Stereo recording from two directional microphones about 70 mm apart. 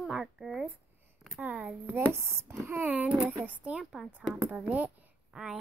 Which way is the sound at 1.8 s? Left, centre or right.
Right.